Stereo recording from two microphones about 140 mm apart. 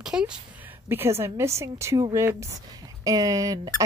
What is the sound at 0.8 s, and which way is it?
A woman's voice, 15° right (ahead or behind).